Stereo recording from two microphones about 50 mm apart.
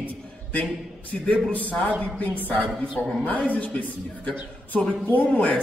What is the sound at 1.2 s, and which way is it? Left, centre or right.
A man's voice, left.